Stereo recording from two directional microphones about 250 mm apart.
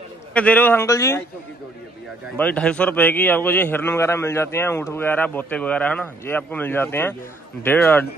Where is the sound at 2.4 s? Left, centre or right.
Centre.